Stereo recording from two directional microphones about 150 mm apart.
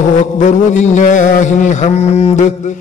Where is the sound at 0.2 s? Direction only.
55° left (ahead or behind).